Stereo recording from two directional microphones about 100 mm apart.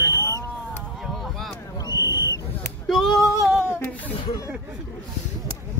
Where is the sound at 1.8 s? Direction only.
40° left (ahead or behind).